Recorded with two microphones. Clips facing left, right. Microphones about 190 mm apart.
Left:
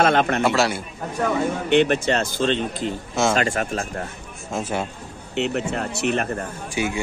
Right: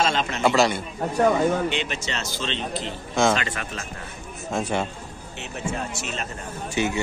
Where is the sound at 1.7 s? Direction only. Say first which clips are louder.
Left 11 dB; 55° left (ahead or behind).